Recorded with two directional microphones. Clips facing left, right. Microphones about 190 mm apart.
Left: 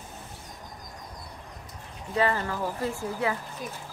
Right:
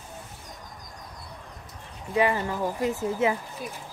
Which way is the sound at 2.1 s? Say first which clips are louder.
Right 2 dB; 15° right (ahead or behind).